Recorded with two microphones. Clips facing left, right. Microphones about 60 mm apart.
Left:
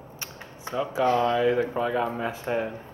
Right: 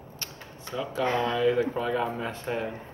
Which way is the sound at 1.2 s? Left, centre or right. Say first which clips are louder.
Left 2 dB; centre.